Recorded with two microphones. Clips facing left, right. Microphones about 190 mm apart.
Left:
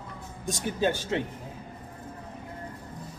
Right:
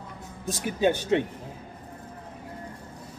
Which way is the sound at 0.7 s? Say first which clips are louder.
Right 5 dB; 15° right (ahead or behind).